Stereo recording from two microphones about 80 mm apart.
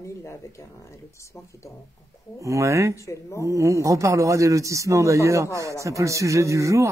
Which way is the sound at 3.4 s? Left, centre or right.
Right.